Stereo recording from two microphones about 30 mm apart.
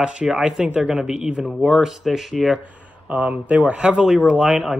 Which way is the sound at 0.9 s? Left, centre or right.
Right.